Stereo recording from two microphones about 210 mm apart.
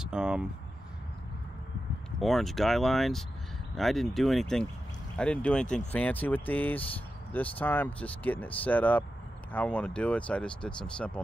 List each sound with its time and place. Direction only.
0.0 s speech: 5° right (ahead or behind)
2.1 s speech: centre (ahead or behind)